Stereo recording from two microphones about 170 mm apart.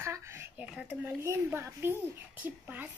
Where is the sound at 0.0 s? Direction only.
15° right (ahead or behind).